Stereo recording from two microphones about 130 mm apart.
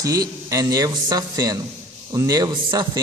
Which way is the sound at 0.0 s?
30° right (ahead or behind).